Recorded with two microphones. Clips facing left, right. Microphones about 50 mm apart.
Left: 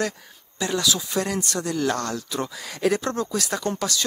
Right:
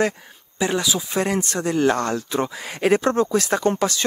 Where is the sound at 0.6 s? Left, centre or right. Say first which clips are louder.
Right 3 dB; right.